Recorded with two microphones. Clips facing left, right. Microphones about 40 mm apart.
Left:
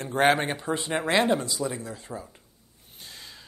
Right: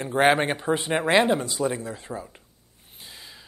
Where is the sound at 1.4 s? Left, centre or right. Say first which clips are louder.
Right 4 dB; right.